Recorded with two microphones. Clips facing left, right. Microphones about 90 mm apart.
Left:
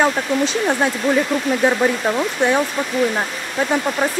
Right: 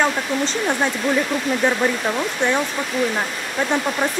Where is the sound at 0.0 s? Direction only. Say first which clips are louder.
Left 3 dB; 10° left (ahead or behind).